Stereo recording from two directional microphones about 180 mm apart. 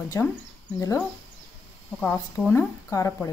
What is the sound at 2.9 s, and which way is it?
Speech, 20° left (ahead or behind).